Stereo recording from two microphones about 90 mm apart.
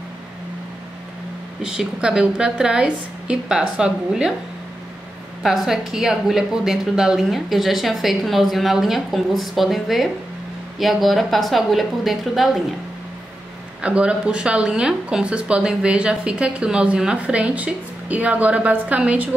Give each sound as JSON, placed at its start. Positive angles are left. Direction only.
{"t": 1.7, "sound": "speech", "side_deg": -10}
{"t": 5.4, "sound": "a woman's voice", "side_deg": -5}
{"t": 13.7, "sound": "speech", "side_deg": -15}